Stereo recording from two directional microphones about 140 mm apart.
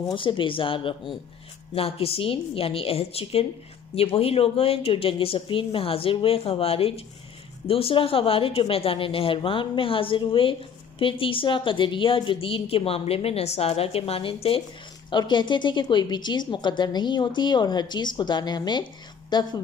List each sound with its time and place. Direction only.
0.1 s a woman's voice: 35° left (ahead or behind)